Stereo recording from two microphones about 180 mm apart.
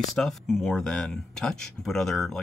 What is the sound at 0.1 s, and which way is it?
Speech, centre (ahead or behind).